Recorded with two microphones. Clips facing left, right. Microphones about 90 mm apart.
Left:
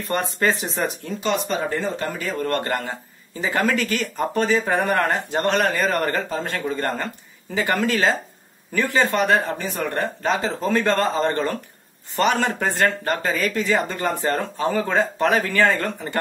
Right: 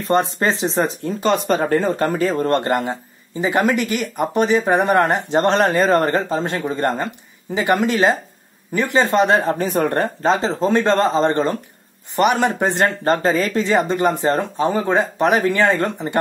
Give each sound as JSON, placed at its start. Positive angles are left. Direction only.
{"t": 0.1, "sound": "a man's voice", "side_deg": -25}
{"t": 1.2, "sound": "speech", "side_deg": -45}
{"t": 2.2, "sound": "a man's voice", "side_deg": -25}
{"t": 9.6, "sound": "speech", "side_deg": -40}
{"t": 10.2, "sound": "a man's voice", "side_deg": -25}